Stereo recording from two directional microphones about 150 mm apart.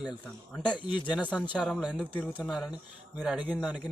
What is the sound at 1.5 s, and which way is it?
A man's voice, 5° right (ahead or behind).